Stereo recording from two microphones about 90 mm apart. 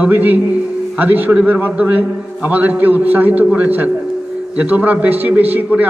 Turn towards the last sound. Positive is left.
turn(degrees=-20)  # may be behind; listen again after turning